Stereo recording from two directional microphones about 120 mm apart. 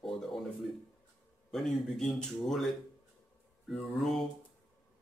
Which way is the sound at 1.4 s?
5° left (ahead or behind).